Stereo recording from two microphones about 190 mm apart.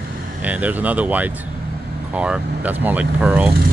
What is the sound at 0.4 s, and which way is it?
Speech, 10° right (ahead or behind).